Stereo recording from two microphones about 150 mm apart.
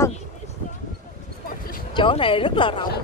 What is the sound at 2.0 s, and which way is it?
Speech, 35° left (ahead or behind).